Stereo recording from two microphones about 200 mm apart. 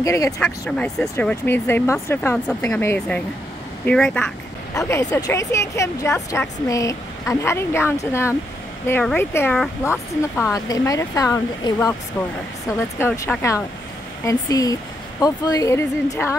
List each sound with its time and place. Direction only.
0.0 s speech: 15° left (ahead or behind)
0.4 s speech: 5° left (ahead or behind)